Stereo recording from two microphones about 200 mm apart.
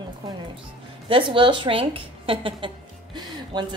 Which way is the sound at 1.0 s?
25° right (ahead or behind).